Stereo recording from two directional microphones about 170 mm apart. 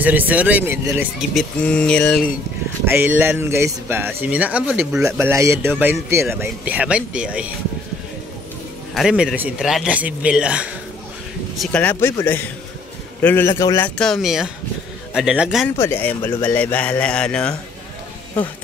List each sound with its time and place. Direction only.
0.0 s speech: 10° right (ahead or behind)
1.3 s speech: 5° left (ahead or behind)
2.8 s speech: 15° right (ahead or behind)
8.9 s speech: 5° right (ahead or behind)
11.6 s speech: 10° left (ahead or behind)
13.5 s speech: 25° left (ahead or behind)
13.7 s speech: 5° left (ahead or behind)
15.8 s speech: 10° left (ahead or behind)